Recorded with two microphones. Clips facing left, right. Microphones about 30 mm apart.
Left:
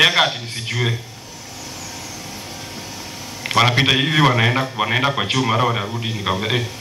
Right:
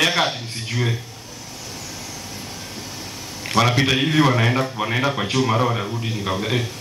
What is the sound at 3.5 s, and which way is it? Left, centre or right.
A man's voice, left.